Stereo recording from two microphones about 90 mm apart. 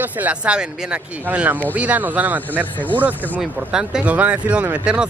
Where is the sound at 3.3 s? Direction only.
10° right (ahead or behind).